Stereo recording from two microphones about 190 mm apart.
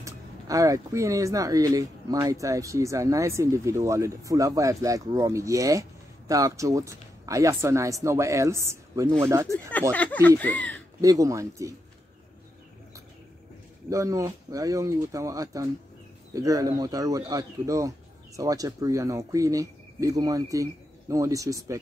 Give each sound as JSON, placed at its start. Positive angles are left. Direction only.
{"t": 0.0, "sound": "speech", "side_deg": -15}
{"t": 9.5, "sound": "speech", "side_deg": 10}
{"t": 11.0, "sound": "speech", "side_deg": -15}
{"t": 13.8, "sound": "speech", "side_deg": -15}